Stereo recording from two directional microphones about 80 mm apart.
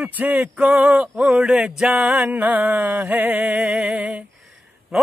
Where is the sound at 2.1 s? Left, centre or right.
Centre.